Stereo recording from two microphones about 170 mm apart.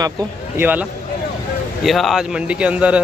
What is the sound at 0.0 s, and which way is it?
Speech, 20° right (ahead or behind).